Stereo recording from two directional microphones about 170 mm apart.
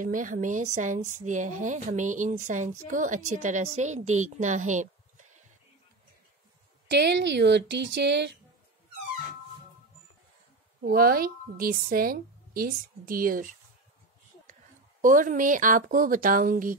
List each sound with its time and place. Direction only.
0.0 s speech: 50° right (ahead or behind)
6.9 s speech: 90° right
10.8 s a woman's voice: 60° right (ahead or behind)